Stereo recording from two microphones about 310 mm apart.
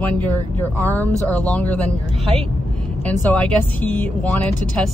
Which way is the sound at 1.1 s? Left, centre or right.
Centre.